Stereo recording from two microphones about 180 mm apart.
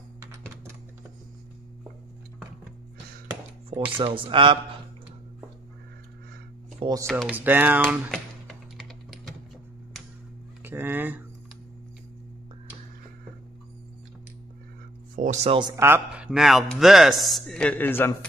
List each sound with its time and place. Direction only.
4.0 s speech: 30° right (ahead or behind)
6.8 s speech: 20° right (ahead or behind)
7.2 s speech: 10° right (ahead or behind)
8.1 s typing: centre (ahead or behind)
10.6 s speech: 10° right (ahead or behind)
15.1 s speech: 40° right (ahead or behind)
15.6 s speech: 15° right (ahead or behind)
16.3 s a man's voice: centre (ahead or behind)